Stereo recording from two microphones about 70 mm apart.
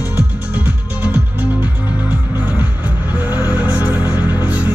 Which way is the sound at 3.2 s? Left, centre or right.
Left.